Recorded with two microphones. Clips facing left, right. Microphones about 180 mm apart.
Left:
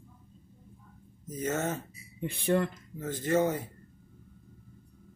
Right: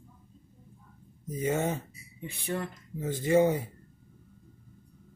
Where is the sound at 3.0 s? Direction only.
10° right (ahead or behind).